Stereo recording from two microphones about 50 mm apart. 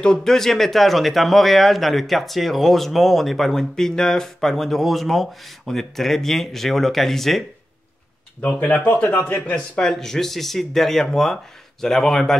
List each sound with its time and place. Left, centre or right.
0.0 s speech: centre
8.7 s speech: left
9.8 s speech: centre